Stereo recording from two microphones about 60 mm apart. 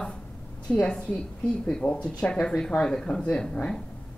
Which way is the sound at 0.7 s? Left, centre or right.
Centre.